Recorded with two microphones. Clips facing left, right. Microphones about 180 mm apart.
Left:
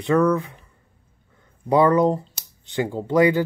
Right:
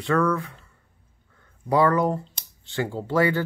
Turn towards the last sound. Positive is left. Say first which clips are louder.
# left 5 dB
turn(degrees=15)  # may be behind; listen again after turning